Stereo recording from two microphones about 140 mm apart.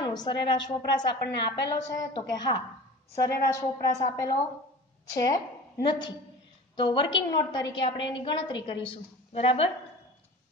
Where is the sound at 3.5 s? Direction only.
25° left (ahead or behind).